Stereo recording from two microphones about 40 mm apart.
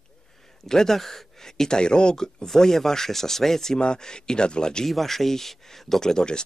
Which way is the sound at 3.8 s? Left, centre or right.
Left.